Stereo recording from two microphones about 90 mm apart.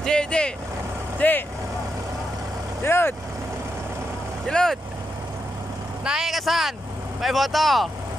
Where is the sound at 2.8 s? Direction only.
25° left (ahead or behind).